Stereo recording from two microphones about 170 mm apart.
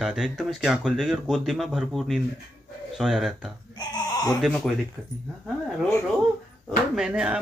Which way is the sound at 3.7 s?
25° left (ahead or behind).